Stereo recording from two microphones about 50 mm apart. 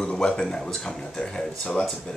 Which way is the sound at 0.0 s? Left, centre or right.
Centre.